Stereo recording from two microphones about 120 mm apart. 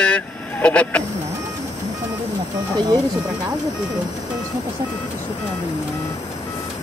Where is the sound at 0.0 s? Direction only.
10° left (ahead or behind).